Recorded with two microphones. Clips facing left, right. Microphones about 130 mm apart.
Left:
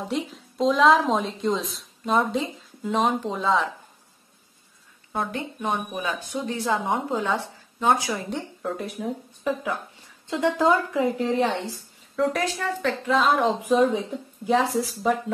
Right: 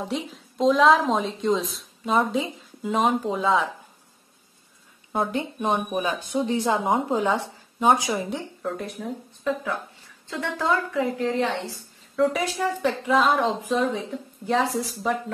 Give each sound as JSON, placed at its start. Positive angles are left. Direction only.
{"t": 0.1, "sound": "speech", "side_deg": 0}
{"t": 5.3, "sound": "speech", "side_deg": -20}
{"t": 8.3, "sound": "speech", "side_deg": 0}
{"t": 10.2, "sound": "a woman's voice", "side_deg": 20}
{"t": 12.2, "sound": "speech", "side_deg": 0}
{"t": 12.5, "sound": "speech", "side_deg": -20}
{"t": 13.1, "sound": "speech", "side_deg": 0}